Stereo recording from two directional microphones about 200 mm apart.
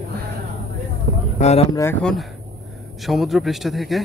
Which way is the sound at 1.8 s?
10° left (ahead or behind).